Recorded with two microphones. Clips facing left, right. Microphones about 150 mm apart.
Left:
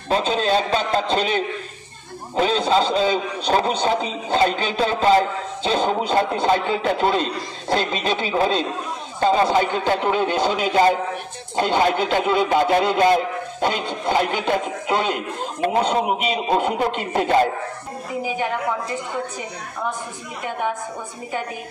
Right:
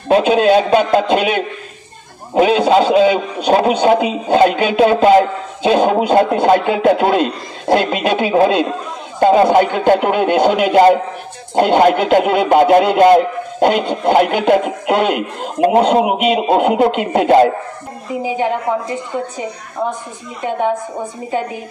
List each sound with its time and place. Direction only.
0.1 s a man's voice: 60° right (ahead or behind)
18.2 s a woman's voice: 25° right (ahead or behind)